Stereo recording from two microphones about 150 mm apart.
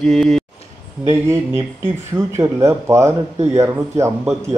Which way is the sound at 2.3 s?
20° right (ahead or behind).